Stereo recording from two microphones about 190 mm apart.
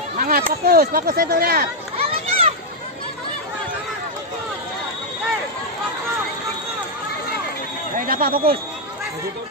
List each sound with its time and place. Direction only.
0.2 s speech: 50° right (ahead or behind)
2.0 s children playing: 30° right (ahead or behind)
8.1 s speech: 50° right (ahead or behind)